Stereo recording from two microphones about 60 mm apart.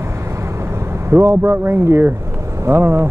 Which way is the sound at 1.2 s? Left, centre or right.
Right.